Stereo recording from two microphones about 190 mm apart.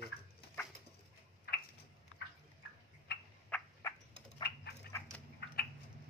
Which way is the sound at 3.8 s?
15° left (ahead or behind).